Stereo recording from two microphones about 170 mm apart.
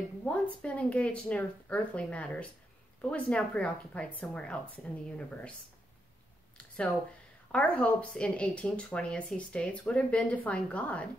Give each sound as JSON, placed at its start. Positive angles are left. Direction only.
{"t": 0.2, "sound": "speech", "side_deg": 5}
{"t": 7.5, "sound": "speech", "side_deg": 5}